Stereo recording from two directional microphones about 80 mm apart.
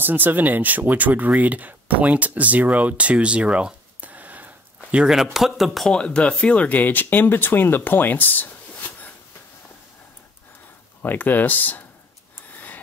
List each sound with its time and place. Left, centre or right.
0.0 s speech: right
5.0 s speech: centre; by 9.1 s left
11.0 s speech: left